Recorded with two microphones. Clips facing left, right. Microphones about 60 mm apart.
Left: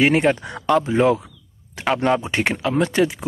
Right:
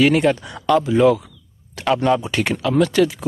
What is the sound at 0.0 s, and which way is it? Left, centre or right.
Speech, left.